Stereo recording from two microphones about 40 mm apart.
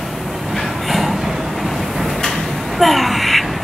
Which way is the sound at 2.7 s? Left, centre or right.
Centre.